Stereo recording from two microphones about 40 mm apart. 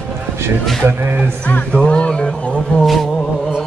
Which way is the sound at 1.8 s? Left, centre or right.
Left.